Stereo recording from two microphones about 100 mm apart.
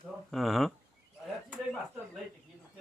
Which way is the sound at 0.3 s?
Centre (ahead or behind).